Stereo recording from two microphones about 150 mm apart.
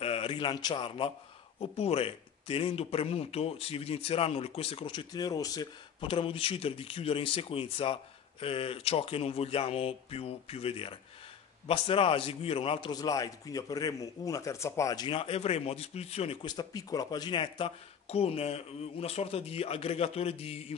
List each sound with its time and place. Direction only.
0.0 s speech: 40° left (ahead or behind); by 5.7 s 25° left (ahead or behind)
5.9 s a man's voice: 35° left (ahead or behind)
15.0 s speech: 40° left (ahead or behind)
16.4 s speech: 25° left (ahead or behind); by 20.6 s 40° left (ahead or behind)